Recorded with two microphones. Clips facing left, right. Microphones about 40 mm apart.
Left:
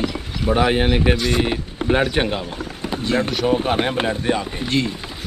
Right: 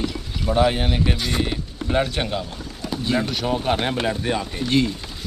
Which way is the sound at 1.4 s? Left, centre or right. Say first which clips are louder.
Left 4 dB; left.